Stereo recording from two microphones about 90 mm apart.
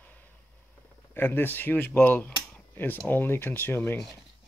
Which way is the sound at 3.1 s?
25° left (ahead or behind).